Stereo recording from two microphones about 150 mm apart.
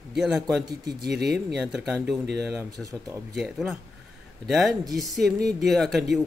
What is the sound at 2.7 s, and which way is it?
Speech, 25° right (ahead or behind).